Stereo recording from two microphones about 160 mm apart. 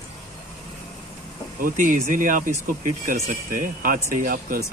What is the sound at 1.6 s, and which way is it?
Speech, 55° right (ahead or behind).